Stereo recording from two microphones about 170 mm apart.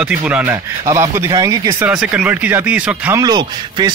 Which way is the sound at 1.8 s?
5° right (ahead or behind).